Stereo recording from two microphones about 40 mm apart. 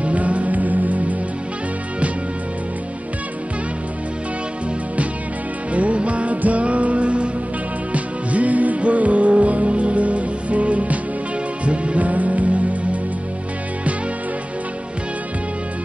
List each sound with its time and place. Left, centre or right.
0.0 s music: right
5.7 s music: right